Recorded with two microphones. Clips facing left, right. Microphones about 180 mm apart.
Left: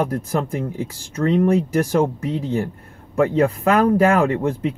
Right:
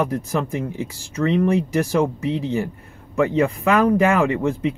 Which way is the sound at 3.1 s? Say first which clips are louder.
Left 1 dB; 55° left (ahead or behind).